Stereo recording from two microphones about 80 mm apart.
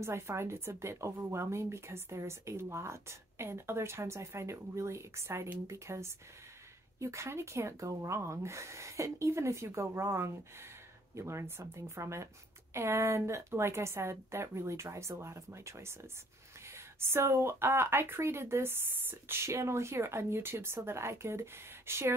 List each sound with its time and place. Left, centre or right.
0.0 s speech: right